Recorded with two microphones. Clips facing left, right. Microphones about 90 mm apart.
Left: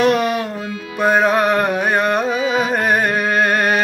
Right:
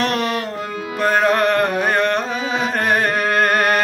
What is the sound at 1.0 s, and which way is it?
Carnatic music, 5° left (ahead or behind).